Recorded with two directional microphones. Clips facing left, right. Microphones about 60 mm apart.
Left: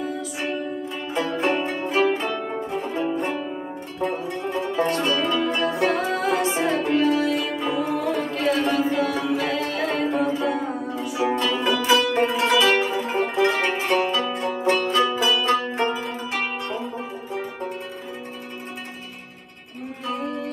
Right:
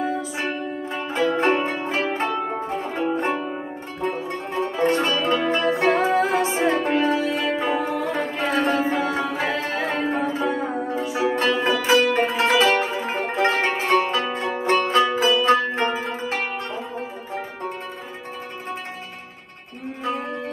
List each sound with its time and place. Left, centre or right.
0.0 s zither: right
4.0 s music: right
15.6 s zither: right
20.1 s music: right